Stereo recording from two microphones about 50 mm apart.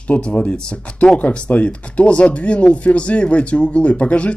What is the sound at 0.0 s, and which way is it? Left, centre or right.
Speech, left.